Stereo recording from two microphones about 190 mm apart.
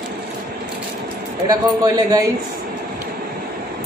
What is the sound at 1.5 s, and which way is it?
Speech, 20° right (ahead or behind).